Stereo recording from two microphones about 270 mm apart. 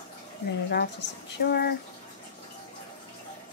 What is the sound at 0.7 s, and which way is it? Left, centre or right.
Speech, left.